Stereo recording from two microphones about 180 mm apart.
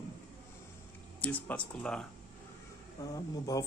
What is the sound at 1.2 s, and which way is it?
Speech, 10° left (ahead or behind).